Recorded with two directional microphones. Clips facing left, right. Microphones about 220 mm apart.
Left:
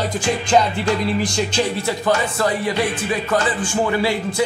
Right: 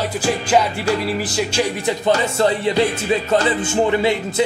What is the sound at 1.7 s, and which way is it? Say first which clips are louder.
Speech: right 2 dB; 20° right (ahead or behind).